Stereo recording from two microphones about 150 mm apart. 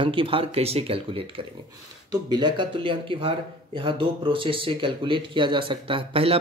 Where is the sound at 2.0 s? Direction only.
25° right (ahead or behind).